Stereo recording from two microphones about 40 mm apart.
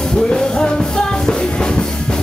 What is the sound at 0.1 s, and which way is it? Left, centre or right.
Music, centre.